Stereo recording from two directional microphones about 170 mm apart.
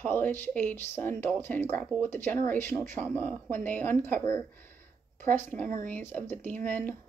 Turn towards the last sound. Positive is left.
turn(degrees=10)  # may be behind; listen again after turning